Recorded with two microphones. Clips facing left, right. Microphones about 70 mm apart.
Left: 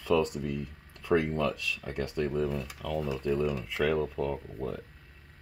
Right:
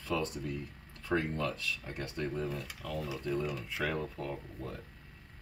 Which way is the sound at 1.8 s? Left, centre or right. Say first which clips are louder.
Left 6 dB; left.